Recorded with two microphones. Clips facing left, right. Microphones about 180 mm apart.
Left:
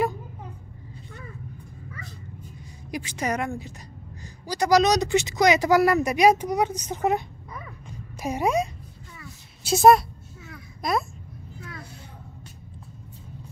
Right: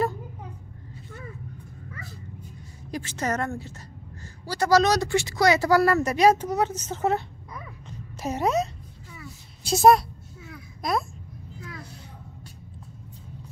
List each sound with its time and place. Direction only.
2.9 s a woman's voice: 15° left (ahead or behind)
9.1 s a sound: centre (ahead or behind)
10.5 s babbling: centre (ahead or behind)